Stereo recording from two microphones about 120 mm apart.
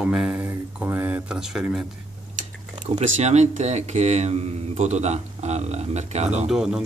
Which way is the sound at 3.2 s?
70° right (ahead or behind).